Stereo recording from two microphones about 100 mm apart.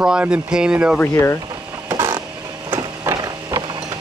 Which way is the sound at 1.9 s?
45° right (ahead or behind).